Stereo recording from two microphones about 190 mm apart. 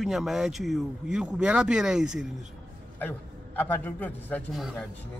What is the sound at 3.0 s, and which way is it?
A man's voice, 10° left (ahead or behind).